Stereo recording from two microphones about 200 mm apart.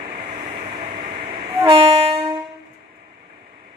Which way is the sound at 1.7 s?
30° right (ahead or behind).